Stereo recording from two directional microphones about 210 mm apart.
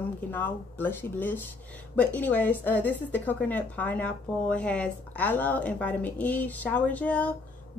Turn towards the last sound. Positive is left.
turn(degrees=5)  # may be behind; listen again after turning